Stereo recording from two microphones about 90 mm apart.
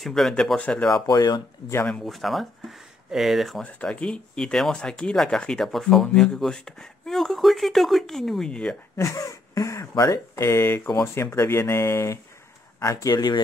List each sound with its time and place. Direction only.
0.0 s speech: 5° left (ahead or behind)
1.0 s speech: 50° left (ahead or behind)
1.9 s speech: 5° left (ahead or behind)
3.6 s speech: 15° left (ahead or behind)
8.9 s speech: 35° left (ahead or behind)